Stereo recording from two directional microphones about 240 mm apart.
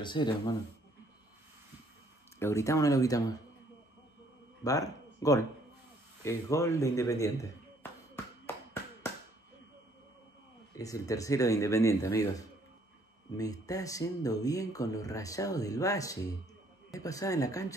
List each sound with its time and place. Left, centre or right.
0.0 s speech: centre
2.3 s speech: centre
4.6 s speech: centre
10.7 s speech: centre